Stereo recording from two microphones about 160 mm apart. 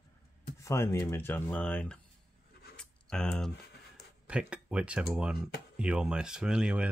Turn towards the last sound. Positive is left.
turn(degrees=-5)  # may be behind; listen again after turning